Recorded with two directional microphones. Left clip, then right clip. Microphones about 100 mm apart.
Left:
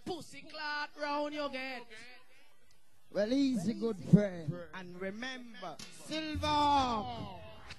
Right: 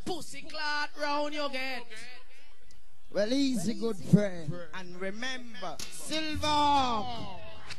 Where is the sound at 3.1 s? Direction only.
30° left (ahead or behind).